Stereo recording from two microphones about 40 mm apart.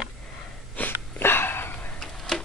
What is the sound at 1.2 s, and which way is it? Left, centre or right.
Sniff, left.